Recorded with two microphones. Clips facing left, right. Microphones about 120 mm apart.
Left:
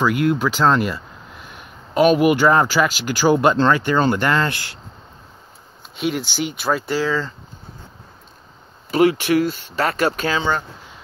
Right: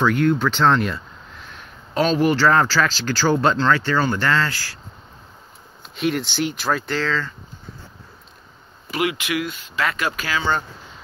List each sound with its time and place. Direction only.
0.0 s speech: 10° left (ahead or behind)
5.9 s speech: centre (ahead or behind)
8.9 s speech: 35° left (ahead or behind)